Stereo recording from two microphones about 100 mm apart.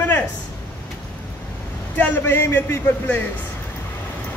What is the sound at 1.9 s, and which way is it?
A man's voice, 20° left (ahead or behind).